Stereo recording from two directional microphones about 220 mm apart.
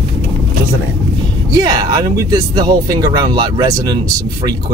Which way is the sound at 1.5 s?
15° right (ahead or behind).